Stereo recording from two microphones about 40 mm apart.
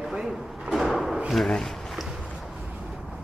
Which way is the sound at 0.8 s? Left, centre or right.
Centre.